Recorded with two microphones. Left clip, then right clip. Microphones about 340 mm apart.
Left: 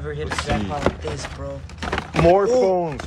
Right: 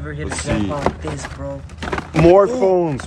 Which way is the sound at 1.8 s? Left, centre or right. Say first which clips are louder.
Right 3 dB; centre.